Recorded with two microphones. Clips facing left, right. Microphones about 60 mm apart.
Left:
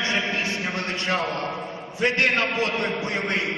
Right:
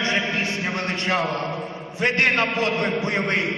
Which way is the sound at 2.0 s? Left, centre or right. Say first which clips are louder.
Right 1 dB; right.